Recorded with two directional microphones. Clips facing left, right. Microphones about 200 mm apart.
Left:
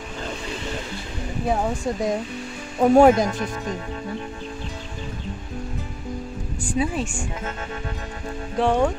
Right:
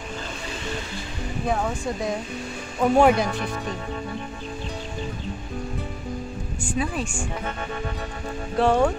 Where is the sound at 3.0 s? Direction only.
45° left (ahead or behind).